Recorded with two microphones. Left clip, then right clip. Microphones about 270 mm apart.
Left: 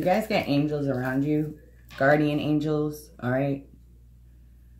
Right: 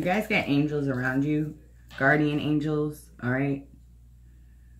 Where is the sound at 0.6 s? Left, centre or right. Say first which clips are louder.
Even; centre.